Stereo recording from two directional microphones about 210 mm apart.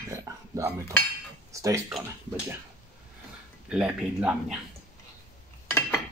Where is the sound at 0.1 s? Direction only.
15° right (ahead or behind).